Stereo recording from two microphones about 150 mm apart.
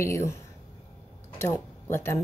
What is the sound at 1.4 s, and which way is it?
Speech, 15° left (ahead or behind).